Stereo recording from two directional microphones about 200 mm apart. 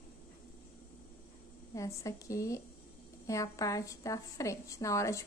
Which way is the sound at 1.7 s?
15° left (ahead or behind).